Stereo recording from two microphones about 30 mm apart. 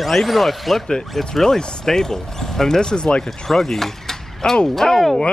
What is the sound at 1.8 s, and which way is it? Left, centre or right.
Speech, centre.